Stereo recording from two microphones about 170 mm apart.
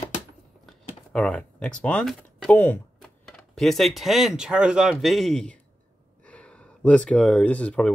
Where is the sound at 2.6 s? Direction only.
10° left (ahead or behind).